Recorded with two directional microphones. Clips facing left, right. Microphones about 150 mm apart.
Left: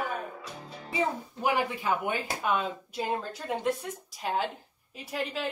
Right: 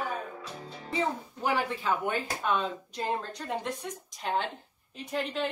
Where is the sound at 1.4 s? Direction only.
10° left (ahead or behind).